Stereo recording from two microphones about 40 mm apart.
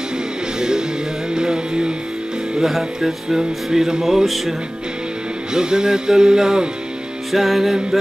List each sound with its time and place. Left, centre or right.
0.6 s music: centre
2.6 s music: centre
5.5 s music: centre
7.3 s music: centre